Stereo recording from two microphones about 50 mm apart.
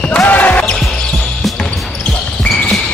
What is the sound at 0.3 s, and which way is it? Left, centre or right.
Basketball bounce, left.